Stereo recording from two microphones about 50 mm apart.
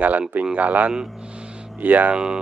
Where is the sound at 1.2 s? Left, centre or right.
Right.